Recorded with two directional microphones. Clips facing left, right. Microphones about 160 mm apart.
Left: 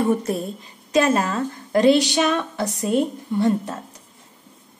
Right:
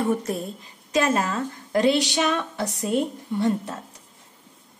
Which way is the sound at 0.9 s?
35° left (ahead or behind).